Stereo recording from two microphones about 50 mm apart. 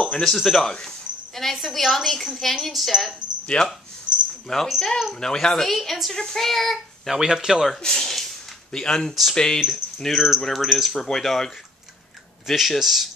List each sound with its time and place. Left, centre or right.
0.2 s a woman's voice: centre
3.5 s speech: centre
4.5 s speech: centre
7.1 s speech: centre
7.8 s speech: centre